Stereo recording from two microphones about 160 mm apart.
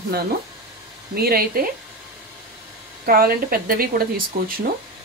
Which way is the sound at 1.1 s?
70° right (ahead or behind).